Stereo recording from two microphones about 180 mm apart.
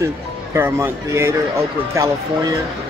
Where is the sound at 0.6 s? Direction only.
10° right (ahead or behind).